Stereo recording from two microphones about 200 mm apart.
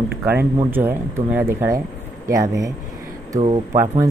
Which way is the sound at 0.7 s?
10° right (ahead or behind).